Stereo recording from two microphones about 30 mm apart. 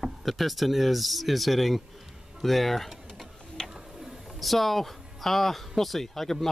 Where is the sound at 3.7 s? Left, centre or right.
Centre.